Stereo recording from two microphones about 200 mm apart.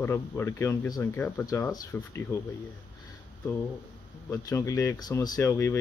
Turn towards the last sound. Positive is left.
turn(degrees=15)  # may be behind; listen again after turning